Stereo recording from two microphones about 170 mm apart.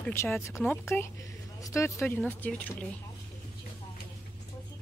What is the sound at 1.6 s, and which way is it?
Speech, 15° left (ahead or behind).